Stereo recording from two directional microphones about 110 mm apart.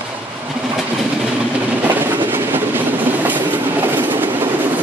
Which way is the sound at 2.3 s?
20° right (ahead or behind).